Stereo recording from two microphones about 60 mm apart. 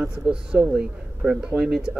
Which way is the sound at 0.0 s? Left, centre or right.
Centre.